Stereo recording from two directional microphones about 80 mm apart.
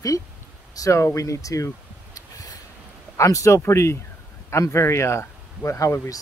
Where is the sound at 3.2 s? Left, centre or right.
Left.